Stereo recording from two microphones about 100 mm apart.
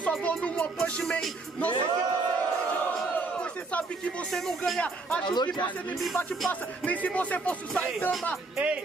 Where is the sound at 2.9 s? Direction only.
10° left (ahead or behind).